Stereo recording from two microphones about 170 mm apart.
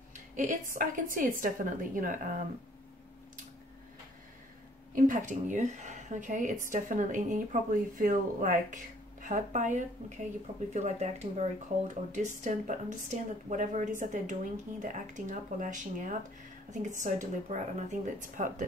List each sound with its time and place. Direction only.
0.1 s speech: 50° right (ahead or behind)
4.9 s speech: 50° right (ahead or behind)